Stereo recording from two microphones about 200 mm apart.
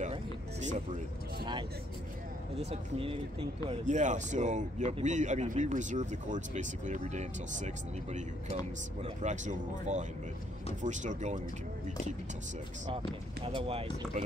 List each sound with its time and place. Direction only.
0.0 s a sound: 35° right (ahead or behind)
2.6 s speech: 30° right (ahead or behind)
12.8 s speech: 25° right (ahead or behind)